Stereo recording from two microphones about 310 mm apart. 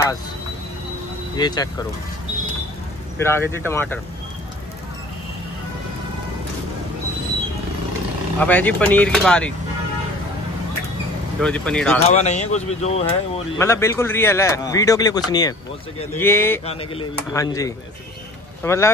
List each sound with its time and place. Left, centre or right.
1.3 s a man's voice: centre
3.2 s a man's voice: centre
8.4 s speech: centre
11.4 s speech: centre
12.0 s speech: left
13.6 s a man's voice: centre